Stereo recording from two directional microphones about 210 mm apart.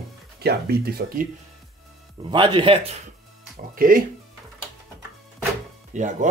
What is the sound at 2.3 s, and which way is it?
Speech, 25° right (ahead or behind).